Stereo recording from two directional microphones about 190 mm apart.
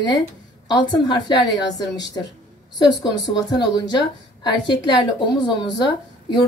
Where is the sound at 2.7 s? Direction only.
20° left (ahead or behind).